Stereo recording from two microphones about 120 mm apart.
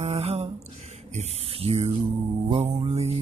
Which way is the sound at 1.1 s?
60° right (ahead or behind).